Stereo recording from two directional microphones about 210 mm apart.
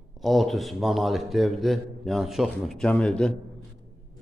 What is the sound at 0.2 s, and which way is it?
A man's voice, centre (ahead or behind).